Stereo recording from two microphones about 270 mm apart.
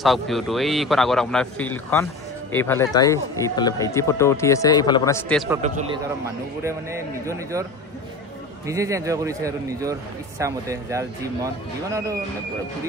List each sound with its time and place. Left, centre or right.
0.0 s a man's voice: centre
6.6 s speech: centre
8.6 s speech: centre